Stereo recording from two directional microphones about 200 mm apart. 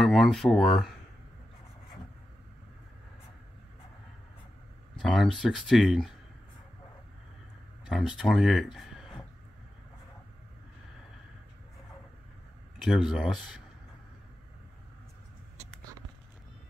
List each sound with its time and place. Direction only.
0.0 s speech: centre (ahead or behind)
5.0 s speech: centre (ahead or behind)
7.8 s speech: centre (ahead or behind)
8.7 s a sound: centre (ahead or behind)
12.8 s speech: centre (ahead or behind)